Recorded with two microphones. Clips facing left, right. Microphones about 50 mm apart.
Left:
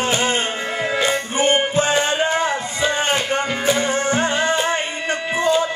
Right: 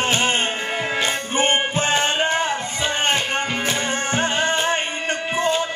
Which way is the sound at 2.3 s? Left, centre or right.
Left.